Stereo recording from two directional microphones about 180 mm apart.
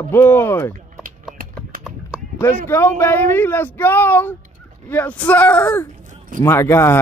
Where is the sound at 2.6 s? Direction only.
15° left (ahead or behind).